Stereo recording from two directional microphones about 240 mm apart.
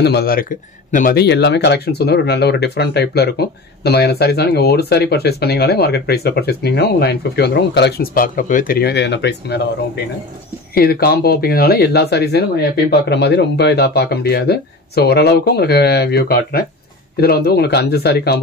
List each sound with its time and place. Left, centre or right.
0.0 s speech: left